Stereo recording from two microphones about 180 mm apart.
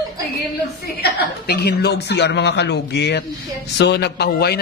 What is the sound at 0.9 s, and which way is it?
A man's voice, 60° left (ahead or behind).